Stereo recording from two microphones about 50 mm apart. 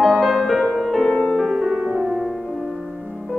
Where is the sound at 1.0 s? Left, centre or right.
Centre.